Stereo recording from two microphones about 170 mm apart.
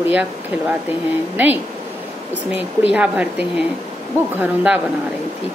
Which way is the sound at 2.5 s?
10° right (ahead or behind).